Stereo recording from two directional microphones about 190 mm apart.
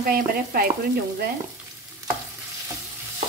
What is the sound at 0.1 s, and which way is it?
Stir, 50° right (ahead or behind).